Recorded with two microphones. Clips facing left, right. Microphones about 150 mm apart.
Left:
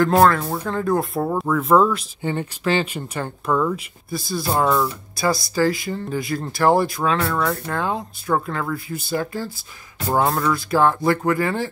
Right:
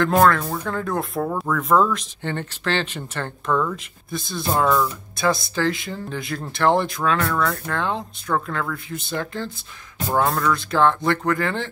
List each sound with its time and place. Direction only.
0.0 s speech: 5° left (ahead or behind)
4.6 s speech: 20° left (ahead or behind)
5.1 s speech: centre (ahead or behind)